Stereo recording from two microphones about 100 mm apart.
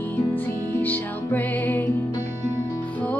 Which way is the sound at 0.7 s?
20° left (ahead or behind).